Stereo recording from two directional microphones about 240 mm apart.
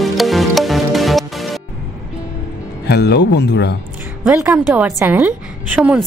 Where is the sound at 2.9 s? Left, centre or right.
Left.